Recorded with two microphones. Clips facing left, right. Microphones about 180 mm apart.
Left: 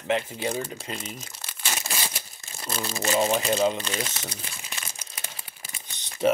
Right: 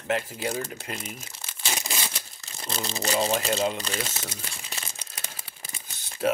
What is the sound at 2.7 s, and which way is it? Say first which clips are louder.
Speech: left 2 dB; 25° right (ahead or behind).